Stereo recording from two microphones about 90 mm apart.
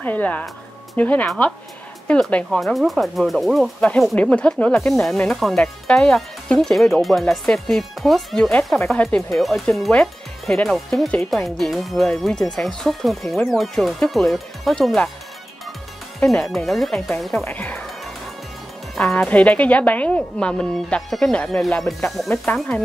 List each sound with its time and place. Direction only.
0.0 s speech: 20° left (ahead or behind); by 3.7 s centre (ahead or behind)
4.1 s speech: 15° left (ahead or behind)
16.2 s speech: 5° left (ahead or behind)
17.5 s speech: 15° left (ahead or behind)
18.9 s speech: 10° left (ahead or behind)